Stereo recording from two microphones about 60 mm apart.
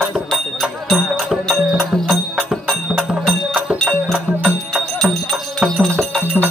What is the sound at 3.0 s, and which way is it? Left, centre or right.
Music, centre.